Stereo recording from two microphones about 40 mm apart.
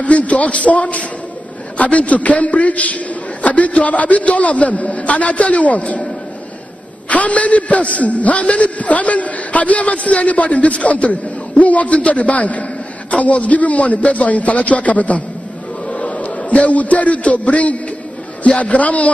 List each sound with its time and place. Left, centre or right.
0.0 s a man's voice: left
7.1 s a man's voice: left